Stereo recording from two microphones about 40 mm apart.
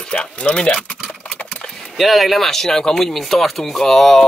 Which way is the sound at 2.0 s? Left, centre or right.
Centre.